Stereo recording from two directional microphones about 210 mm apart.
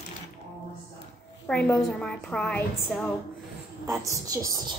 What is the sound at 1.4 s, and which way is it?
A woman's voice, 5° left (ahead or behind).